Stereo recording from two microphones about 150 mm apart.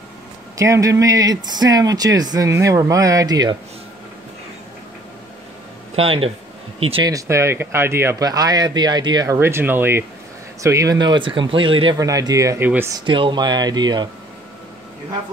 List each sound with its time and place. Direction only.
0.6 s speech: 20° right (ahead or behind)
5.9 s speech: 40° right (ahead or behind)
7.1 s speech: 20° right (ahead or behind); by 12.0 s 35° right (ahead or behind)
12.0 s speech: 25° right (ahead or behind)
12.9 s speech: 30° right (ahead or behind)